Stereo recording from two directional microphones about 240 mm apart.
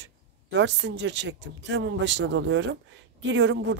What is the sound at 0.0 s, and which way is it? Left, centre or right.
Speech, right.